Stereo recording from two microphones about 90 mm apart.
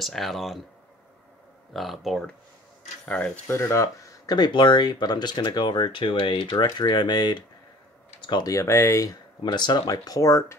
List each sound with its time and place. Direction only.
0.0 s speech: centre (ahead or behind)
1.7 s speech: centre (ahead or behind)
3.4 s speech: 30° left (ahead or behind)
4.3 s speech: 55° left (ahead or behind)
8.5 s speech: 30° left (ahead or behind)
9.4 s speech: 55° left (ahead or behind); by 10.4 s 40° left (ahead or behind)